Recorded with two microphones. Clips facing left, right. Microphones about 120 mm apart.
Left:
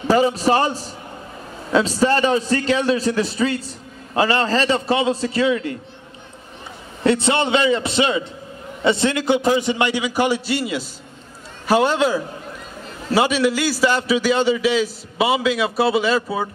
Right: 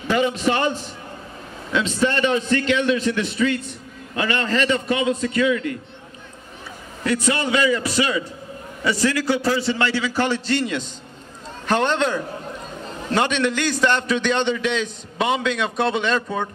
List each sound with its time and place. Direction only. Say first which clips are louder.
0.1 s a man's voice: left 4 dB; 35° left (ahead or behind)
7.0 s a man's voice: left 4 dB; 25° left (ahead or behind); by 16.4 s 5° left (ahead or behind)